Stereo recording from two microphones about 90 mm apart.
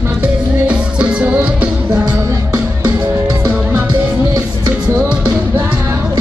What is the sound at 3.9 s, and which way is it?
Music, 55° right (ahead or behind).